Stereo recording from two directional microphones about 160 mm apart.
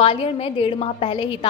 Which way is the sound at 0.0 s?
35° left (ahead or behind).